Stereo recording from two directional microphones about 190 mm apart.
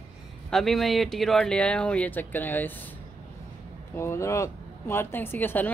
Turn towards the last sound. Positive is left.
turn(degrees=10)  # may be behind; listen again after turning